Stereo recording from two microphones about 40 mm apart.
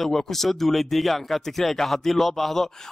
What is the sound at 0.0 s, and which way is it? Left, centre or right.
A man's voice, centre.